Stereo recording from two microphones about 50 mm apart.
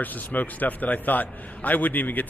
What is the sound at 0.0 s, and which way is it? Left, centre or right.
A man's voice, left.